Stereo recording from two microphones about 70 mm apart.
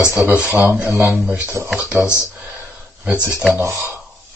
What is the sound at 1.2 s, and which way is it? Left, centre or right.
Speech, centre.